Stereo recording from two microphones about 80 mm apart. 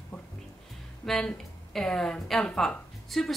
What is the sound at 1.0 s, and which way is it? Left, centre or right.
A woman's voice, centre.